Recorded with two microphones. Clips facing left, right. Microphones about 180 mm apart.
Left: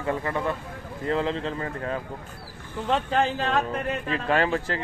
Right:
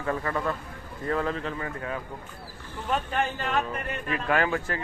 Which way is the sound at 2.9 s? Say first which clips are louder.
Left 4 dB; 90° left.